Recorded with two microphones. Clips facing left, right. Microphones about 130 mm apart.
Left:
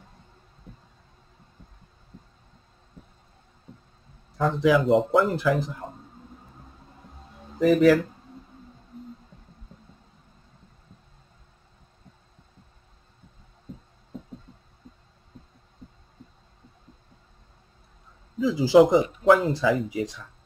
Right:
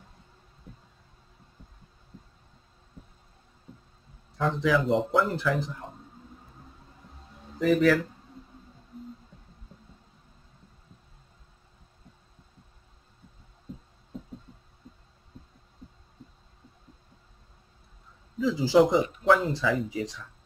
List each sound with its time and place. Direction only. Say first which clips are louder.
0.7 s a sound: left 1 dB; 5° right (ahead or behind)
2.1 s heart sounds: left 1 dB; 5° right (ahead or behind)
3.7 s a sound: left 1 dB; 5° right (ahead or behind)
4.4 s speech: left 4 dB; 5° left (ahead or behind)
7.5 s speech: left 4 dB; 5° left (ahead or behind)
8.9 s a sound: left 1 dB; 5° right (ahead or behind)
13.7 s music: even; centre (ahead or behind)
14.8 s heart sounds: left 1 dB; 5° right (ahead or behind)
18.4 s a man's voice: left 4 dB; 10° left (ahead or behind)